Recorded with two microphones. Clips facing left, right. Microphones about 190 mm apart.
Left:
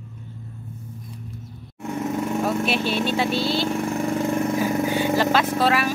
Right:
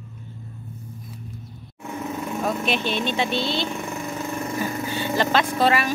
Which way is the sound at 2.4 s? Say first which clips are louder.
Right 2 dB; 5° left (ahead or behind).